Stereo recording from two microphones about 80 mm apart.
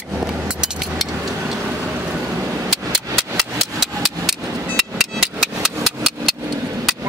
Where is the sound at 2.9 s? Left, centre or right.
Centre.